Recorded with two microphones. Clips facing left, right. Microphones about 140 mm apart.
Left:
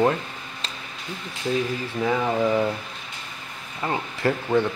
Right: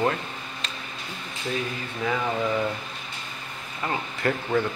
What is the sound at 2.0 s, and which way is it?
Speech, 10° left (ahead or behind).